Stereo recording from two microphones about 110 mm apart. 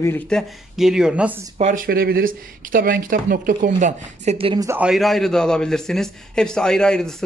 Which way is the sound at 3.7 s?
90° right.